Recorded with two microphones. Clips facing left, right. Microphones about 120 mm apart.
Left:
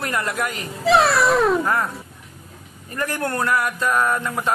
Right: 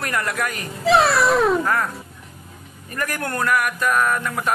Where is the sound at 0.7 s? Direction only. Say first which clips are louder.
Even; centre (ahead or behind).